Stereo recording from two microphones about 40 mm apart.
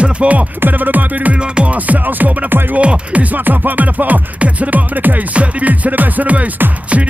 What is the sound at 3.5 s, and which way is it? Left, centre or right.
Music, right.